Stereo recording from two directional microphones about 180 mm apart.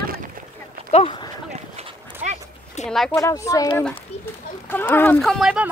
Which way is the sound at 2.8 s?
40° left (ahead or behind).